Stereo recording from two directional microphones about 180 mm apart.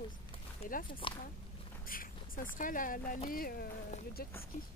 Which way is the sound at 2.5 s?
50° left (ahead or behind).